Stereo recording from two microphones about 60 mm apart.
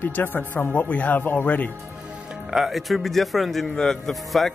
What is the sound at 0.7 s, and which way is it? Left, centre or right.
Speech, left.